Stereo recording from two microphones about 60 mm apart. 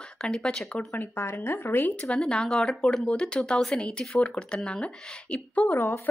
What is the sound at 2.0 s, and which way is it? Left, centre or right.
Speech, centre.